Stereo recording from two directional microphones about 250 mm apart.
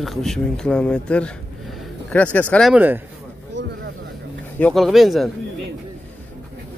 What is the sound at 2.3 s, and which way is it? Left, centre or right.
Speech, centre.